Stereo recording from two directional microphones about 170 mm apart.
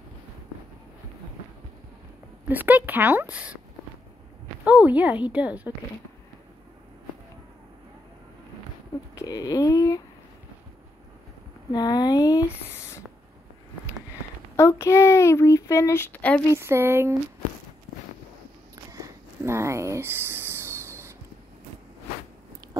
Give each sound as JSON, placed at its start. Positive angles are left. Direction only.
{"t": 2.4, "sound": "a woman's voice", "side_deg": -10}
{"t": 4.8, "sound": "a woman's voice", "side_deg": -10}
{"t": 9.1, "sound": "speech", "side_deg": 20}
{"t": 11.7, "sound": "speech", "side_deg": 25}
{"t": 14.6, "sound": "speech", "side_deg": 15}
{"t": 16.5, "sound": "a woman's voice", "side_deg": -15}
{"t": 18.9, "sound": "a sound", "side_deg": -15}